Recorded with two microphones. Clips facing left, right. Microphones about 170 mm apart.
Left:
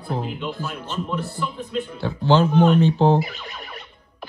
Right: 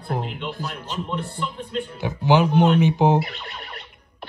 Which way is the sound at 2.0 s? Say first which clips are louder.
Even; 15° right (ahead or behind).